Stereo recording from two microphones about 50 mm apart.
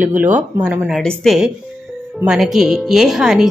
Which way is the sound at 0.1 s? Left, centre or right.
Right.